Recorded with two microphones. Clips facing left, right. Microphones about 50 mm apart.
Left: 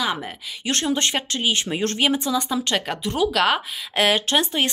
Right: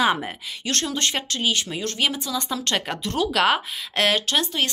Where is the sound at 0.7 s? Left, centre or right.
Centre.